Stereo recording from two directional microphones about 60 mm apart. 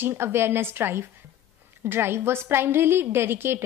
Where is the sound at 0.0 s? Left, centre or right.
Right.